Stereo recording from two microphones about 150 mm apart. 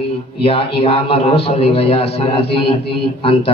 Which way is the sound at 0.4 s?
40° left (ahead or behind).